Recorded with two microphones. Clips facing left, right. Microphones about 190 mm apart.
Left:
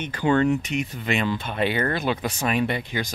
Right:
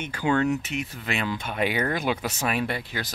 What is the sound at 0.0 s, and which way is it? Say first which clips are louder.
Speech: left 3 dB; 10° right (ahead or behind).